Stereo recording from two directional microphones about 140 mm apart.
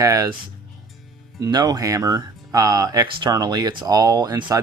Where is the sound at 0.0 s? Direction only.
25° right (ahead or behind).